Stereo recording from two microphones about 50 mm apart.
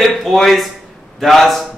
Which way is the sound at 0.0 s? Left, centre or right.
Centre.